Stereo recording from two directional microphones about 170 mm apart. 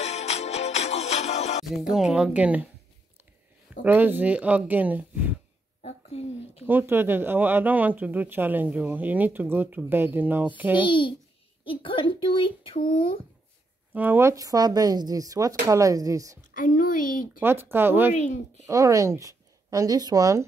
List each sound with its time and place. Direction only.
0.0 s music: 40° left (ahead or behind)
1.7 s a woman's voice: centre (ahead or behind)
3.8 s speech: 10° right (ahead or behind)
5.8 s a sound: 40° left (ahead or behind)
6.6 s speech: 10° right (ahead or behind)
10.9 s a child's voice: 30° left (ahead or behind)
13.9 s speech: 10° right (ahead or behind)
16.3 s a woman's voice: 55° left (ahead or behind)
17.4 s speech: 15° right (ahead or behind)
18.1 s a woman's voice: 45° left (ahead or behind)
18.7 s speech: 20° right (ahead or behind)